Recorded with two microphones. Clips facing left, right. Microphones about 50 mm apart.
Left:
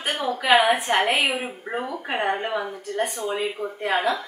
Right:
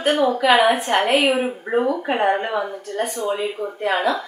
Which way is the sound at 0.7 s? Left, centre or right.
Centre.